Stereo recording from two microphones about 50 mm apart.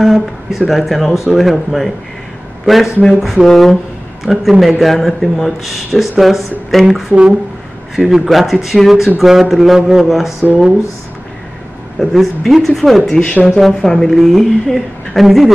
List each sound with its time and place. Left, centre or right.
0.0 s a man's voice: centre
4.2 s speech: centre
7.1 s speech: centre
8.3 s speech: centre
12.0 s speech: centre